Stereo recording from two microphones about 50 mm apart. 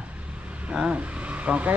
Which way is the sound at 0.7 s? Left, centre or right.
Right.